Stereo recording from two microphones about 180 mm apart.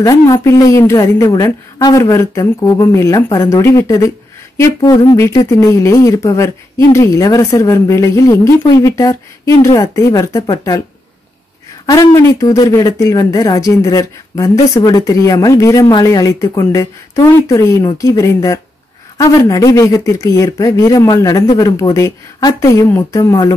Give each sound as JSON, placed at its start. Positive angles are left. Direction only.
{"t": 0.0, "sound": "speech", "side_deg": 20}
{"t": 5.1, "sound": "speech", "side_deg": 15}
{"t": 11.8, "sound": "speech", "side_deg": 20}